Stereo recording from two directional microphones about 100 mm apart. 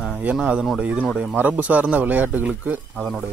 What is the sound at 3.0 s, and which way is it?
Speech, centre (ahead or behind).